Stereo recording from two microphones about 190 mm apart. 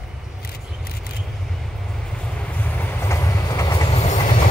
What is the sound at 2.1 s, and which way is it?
Train, 5° left (ahead or behind).